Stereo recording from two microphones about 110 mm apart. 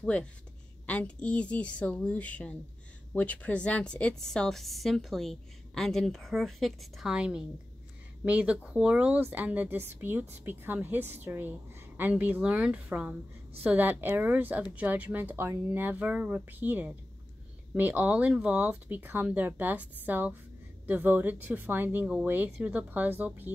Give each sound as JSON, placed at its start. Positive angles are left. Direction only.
{"t": 0.0, "sound": "a woman's voice", "side_deg": 10}